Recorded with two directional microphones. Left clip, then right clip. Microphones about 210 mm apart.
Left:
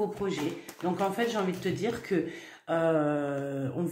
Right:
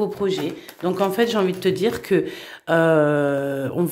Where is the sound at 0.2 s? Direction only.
55° right (ahead or behind).